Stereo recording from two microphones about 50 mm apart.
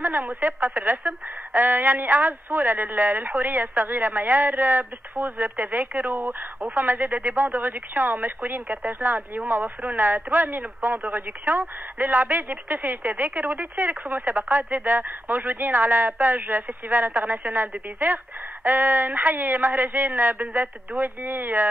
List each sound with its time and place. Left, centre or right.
0.0 s a woman's voice: right